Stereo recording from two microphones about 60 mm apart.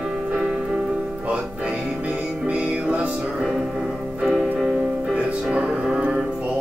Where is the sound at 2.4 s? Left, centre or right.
Right.